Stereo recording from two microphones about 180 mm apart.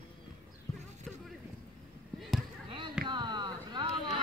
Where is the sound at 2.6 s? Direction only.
25° right (ahead or behind).